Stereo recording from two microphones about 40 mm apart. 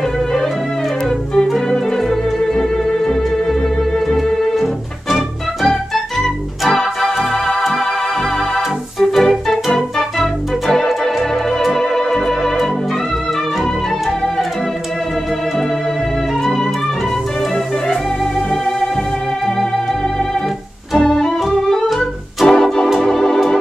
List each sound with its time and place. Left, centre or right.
2.0 s organ: centre
5.1 s music: centre
6.7 s organ: centre
9.1 s organ: centre
21.0 s organ: centre
21.8 s music: centre
22.8 s organ: centre